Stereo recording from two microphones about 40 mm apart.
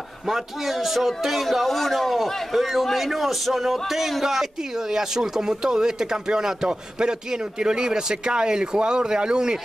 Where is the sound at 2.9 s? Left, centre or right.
Centre.